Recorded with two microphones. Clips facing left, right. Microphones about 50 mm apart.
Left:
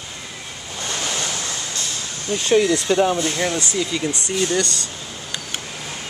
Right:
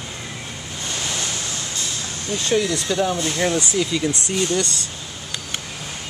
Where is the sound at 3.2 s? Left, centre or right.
Centre.